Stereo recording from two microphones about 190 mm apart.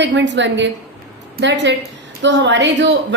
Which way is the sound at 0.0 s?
70° right (ahead or behind).